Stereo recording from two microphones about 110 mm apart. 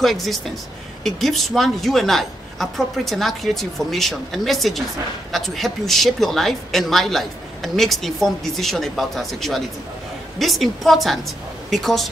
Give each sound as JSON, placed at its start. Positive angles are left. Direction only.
{"t": 0.0, "sound": "speech", "side_deg": 0}